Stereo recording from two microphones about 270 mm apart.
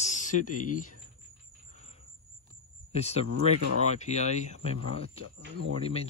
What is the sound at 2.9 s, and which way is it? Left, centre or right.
Speech, left.